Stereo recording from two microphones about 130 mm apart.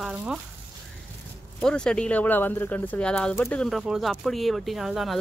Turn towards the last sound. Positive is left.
turn(degrees=0)  # may be behind; listen again after turning